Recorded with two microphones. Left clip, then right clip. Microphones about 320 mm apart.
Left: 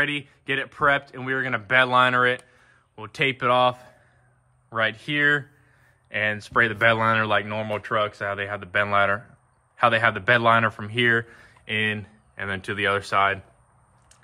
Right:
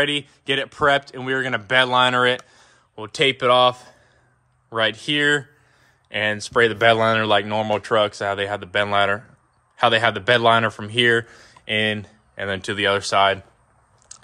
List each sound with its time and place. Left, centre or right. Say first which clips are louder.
0.0 s speech: right 4 dB; centre
14.1 s biting: right 12 dB; centre